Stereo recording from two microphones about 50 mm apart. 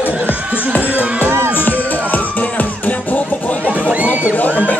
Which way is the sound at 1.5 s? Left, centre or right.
Left.